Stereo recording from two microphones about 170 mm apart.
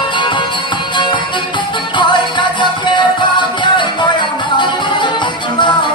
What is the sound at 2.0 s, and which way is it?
Music, 25° left (ahead or behind).